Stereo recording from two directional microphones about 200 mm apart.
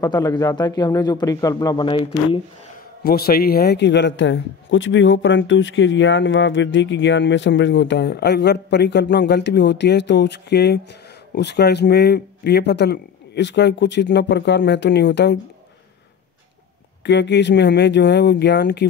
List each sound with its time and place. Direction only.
0.0 s a man's voice: 20° left (ahead or behind)
3.0 s a man's voice: 50° left (ahead or behind)
17.0 s a man's voice: 60° left (ahead or behind)